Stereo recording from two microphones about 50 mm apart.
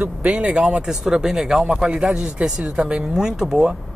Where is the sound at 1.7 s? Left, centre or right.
Centre.